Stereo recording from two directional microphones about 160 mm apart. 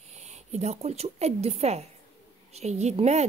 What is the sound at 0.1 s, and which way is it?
A woman's voice, 45° right (ahead or behind).